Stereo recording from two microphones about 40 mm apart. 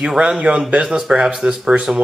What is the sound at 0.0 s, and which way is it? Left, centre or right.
Speech, centre.